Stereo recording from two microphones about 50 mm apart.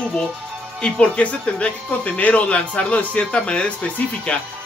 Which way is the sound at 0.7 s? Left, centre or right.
Centre.